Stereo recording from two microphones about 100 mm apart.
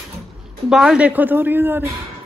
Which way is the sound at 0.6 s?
5° right (ahead or behind).